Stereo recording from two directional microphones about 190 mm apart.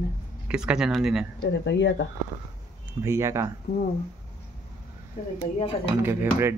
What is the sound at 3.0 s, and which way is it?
Speech, 15° right (ahead or behind).